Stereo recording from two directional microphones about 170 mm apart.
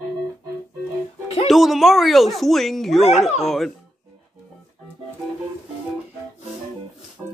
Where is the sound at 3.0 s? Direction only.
40° left (ahead or behind).